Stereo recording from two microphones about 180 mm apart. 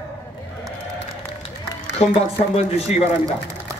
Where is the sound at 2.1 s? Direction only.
35° left (ahead or behind).